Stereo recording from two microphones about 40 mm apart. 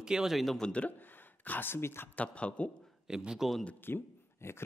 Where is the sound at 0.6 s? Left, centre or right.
Centre.